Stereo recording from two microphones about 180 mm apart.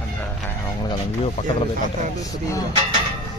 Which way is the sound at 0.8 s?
25° left (ahead or behind).